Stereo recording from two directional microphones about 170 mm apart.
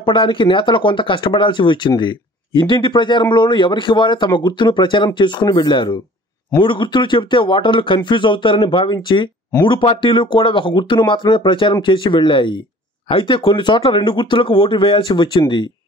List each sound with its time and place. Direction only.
0.0 s speech: 30° left (ahead or behind)